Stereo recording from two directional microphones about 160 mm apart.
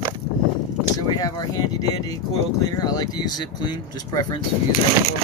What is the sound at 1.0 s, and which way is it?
Speech, 25° left (ahead or behind).